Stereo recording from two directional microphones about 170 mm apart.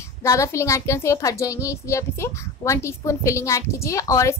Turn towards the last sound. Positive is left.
turn(degrees=20)  # may be behind; listen again after turning